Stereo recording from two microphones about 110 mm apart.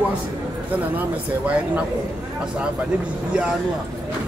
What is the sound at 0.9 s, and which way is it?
Speech, 10° right (ahead or behind).